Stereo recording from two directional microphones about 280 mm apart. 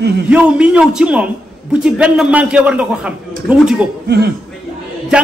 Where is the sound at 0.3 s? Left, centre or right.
Centre.